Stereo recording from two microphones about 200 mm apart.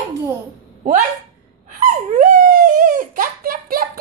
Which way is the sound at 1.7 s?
40° right (ahead or behind).